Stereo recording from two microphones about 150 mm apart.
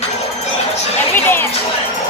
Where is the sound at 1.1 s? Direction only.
15° left (ahead or behind).